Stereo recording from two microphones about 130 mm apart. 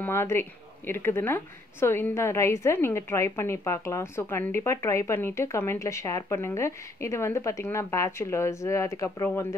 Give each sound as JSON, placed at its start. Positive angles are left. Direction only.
{"t": 0.0, "sound": "a woman's voice", "side_deg": 20}